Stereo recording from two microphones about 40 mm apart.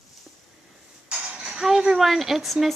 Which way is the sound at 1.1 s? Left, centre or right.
Right.